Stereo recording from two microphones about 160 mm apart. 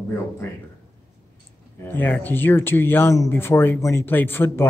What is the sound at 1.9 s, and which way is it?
Speech, 10° left (ahead or behind).